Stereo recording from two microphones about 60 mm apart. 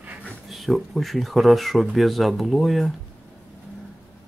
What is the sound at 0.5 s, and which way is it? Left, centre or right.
Speech, centre.